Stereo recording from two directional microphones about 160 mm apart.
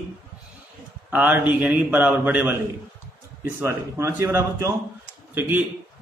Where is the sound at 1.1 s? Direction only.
10° right (ahead or behind).